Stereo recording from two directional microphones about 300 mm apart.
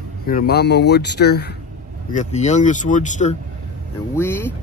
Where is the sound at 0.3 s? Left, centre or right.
Left.